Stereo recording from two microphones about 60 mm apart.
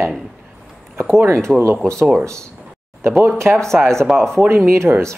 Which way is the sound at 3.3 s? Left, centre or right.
Right.